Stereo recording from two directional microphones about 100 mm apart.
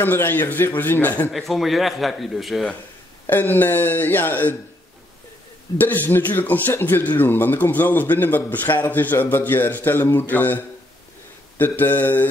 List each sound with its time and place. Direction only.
0.0 s speech: 20° left (ahead or behind)
1.3 s a man's voice: centre (ahead or behind)
3.3 s speech: 20° left (ahead or behind)
5.8 s speech: 20° left (ahead or behind)